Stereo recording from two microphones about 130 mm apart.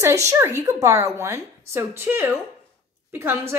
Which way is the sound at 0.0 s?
25° right (ahead or behind).